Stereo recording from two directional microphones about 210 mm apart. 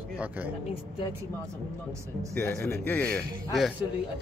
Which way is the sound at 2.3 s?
10° left (ahead or behind).